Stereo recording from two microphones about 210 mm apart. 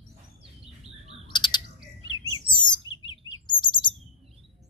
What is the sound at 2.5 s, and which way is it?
Chirp, 20° left (ahead or behind).